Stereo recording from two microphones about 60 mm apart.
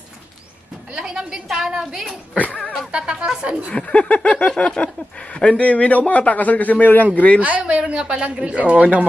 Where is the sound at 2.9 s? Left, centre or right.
Centre.